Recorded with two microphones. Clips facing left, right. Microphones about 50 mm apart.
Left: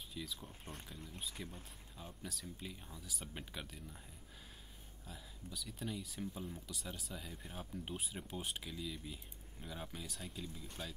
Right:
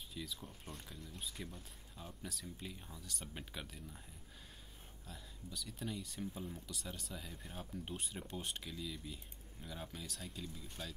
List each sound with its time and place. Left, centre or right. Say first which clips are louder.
0.1 s speech: even; centre
0.9 s speech: left 1 dB; left
1.4 s speech: even; centre
5.0 s speech: left 1 dB; centre